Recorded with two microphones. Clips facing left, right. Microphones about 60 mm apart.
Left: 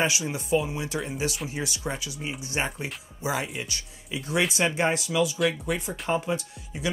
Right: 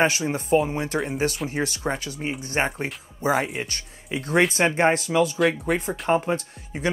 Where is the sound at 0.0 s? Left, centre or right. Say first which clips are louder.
Right 5 dB; right.